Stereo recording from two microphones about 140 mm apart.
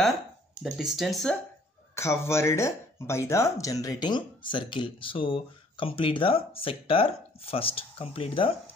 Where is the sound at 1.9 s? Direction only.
20° left (ahead or behind).